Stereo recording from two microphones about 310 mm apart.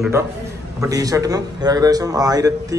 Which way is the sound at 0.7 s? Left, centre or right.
Centre.